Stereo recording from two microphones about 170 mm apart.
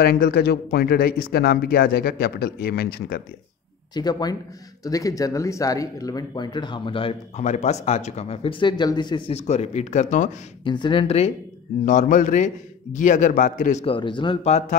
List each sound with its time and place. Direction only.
0.0 s speech: 65° left (ahead or behind)
3.9 s speech: 25° left (ahead or behind)
9.3 s speech: 40° left (ahead or behind)
10.6 s speech: 30° left (ahead or behind)
11.8 s a man's voice: 50° left (ahead or behind)
13.8 s speech: 30° left (ahead or behind)